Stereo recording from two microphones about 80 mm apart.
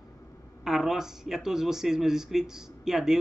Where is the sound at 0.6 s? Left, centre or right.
Centre.